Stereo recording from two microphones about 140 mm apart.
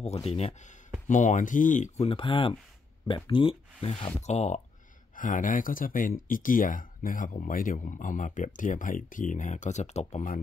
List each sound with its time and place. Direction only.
0.0 s speech: 50° left (ahead or behind)
1.0 s speech: 60° left (ahead or behind)
2.0 s speech: 40° left (ahead or behind)
5.1 s speech: 70° left (ahead or behind); by 10.3 s 55° left (ahead or behind)